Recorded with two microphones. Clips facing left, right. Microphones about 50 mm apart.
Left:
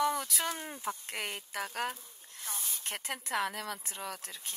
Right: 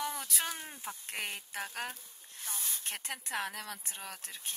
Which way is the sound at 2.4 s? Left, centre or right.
Left.